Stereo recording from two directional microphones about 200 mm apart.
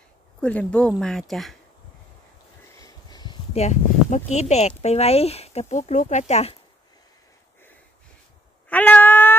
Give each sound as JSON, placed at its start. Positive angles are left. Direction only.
{"t": 0.4, "sound": "speech", "side_deg": 5}
{"t": 2.8, "sound": "a sound", "side_deg": 20}
{"t": 3.6, "sound": "speech", "side_deg": 35}
{"t": 8.6, "sound": "cat", "side_deg": 10}